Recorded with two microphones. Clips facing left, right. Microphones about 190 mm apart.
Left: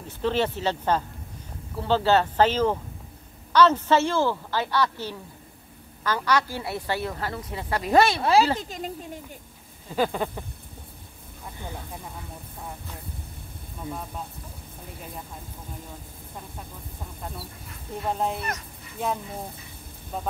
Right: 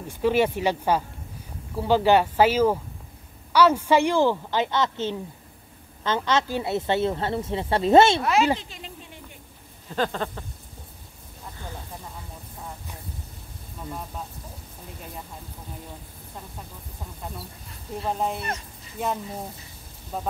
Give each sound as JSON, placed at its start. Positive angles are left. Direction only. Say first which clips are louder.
{"t": 0.2, "sound": "a woman's voice", "louder": "right 3 dB", "side_deg": -10}
{"t": 8.2, "sound": "speech", "louder": "left 2 dB", "side_deg": 30}
{"t": 8.5, "sound": "speech", "louder": "left 8 dB", "side_deg": 45}
{"t": 9.9, "sound": "speech", "louder": "left 1 dB", "side_deg": 10}
{"t": 18.0, "sound": "speech", "louder": "even", "side_deg": 0}